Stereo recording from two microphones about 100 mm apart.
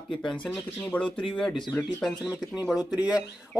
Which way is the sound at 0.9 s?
15° left (ahead or behind).